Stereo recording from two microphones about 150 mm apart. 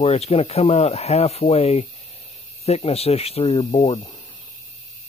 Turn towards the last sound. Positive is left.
turn(degrees=35)  # may be behind; listen again after turning